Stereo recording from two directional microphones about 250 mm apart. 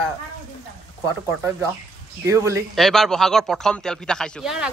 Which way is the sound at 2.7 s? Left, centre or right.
Centre.